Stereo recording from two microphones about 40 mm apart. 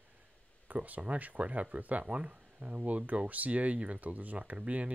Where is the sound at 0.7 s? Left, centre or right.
Right.